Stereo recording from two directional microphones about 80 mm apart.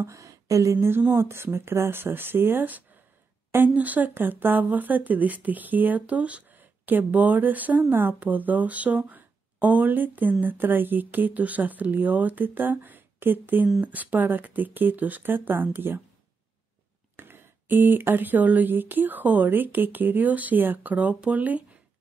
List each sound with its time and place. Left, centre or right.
0.0 s a sound: right
0.8 s speech: right
17.2 s speech: right